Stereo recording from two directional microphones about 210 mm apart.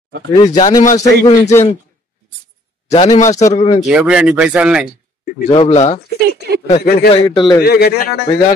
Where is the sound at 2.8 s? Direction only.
30° left (ahead or behind).